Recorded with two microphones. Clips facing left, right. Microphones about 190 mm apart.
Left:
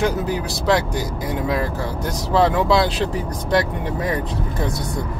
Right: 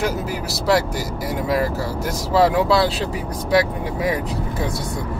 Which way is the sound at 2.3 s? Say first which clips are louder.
Even; 5° right (ahead or behind).